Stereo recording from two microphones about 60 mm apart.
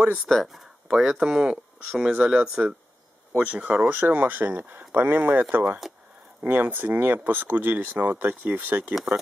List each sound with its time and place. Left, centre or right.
0.3 s speech: centre
0.9 s speech: centre; by 8.9 s right
8.9 s speech: centre